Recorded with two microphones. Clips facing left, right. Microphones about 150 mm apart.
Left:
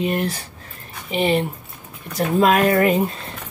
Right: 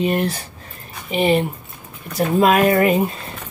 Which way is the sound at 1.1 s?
10° right (ahead or behind).